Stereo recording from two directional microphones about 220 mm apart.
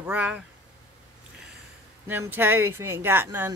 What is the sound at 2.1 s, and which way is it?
Speech, 10° right (ahead or behind).